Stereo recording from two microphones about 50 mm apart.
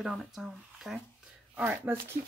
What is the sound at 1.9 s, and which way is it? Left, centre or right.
Speech, right.